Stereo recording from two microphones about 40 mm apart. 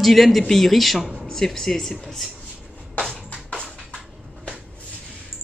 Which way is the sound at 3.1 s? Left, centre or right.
Left.